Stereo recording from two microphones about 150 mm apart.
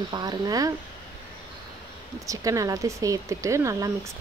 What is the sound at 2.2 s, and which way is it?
Speech, 20° right (ahead or behind).